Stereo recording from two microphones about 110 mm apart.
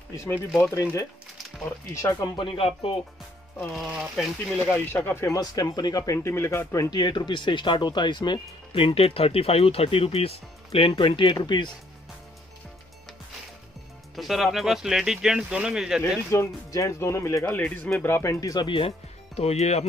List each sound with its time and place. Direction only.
0.6 s speech: 25° left (ahead or behind)
2.1 s speech: 50° left (ahead or behind)
3.7 s speech: 5° right (ahead or behind)
4.7 s speech: 20° left (ahead or behind)
7.0 s speech: 45° left (ahead or behind)
14.1 s speech: centre (ahead or behind)
16.3 s speech: 25° left (ahead or behind)
17.5 s speech: 15° left (ahead or behind); by 18.7 s 35° left (ahead or behind)
18.7 s speech: 60° left (ahead or behind); by 19.9 s 75° left (ahead or behind)